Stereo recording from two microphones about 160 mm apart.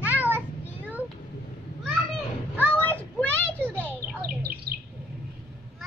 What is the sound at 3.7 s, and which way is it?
Bird, 10° left (ahead or behind).